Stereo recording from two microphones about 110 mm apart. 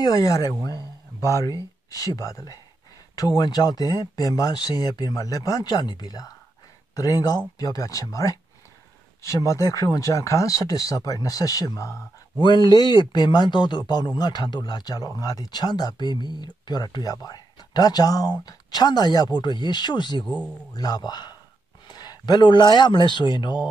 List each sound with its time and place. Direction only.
0.0 s speech: 30° left (ahead or behind)
12.4 s speech: 40° left (ahead or behind)
20.2 s a man's voice: 10° left (ahead or behind)
20.7 s speech: 35° left (ahead or behind)